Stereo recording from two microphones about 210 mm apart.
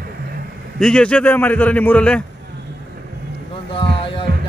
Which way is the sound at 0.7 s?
5° left (ahead or behind).